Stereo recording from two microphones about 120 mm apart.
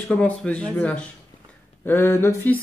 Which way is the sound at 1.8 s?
20° left (ahead or behind).